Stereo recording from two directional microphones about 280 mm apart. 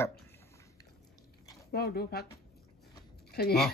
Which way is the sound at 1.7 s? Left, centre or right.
Left.